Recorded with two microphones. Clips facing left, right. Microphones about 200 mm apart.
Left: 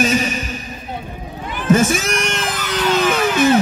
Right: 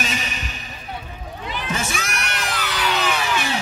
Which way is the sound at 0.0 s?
45° left (ahead or behind).